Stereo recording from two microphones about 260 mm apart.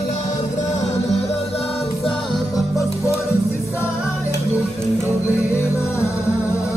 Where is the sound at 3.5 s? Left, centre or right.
Centre.